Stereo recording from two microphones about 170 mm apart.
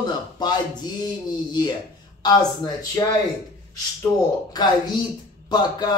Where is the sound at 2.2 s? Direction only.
25° left (ahead or behind).